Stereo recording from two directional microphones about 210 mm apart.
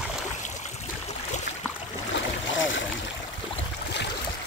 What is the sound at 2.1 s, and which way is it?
Boat, 65° left (ahead or behind).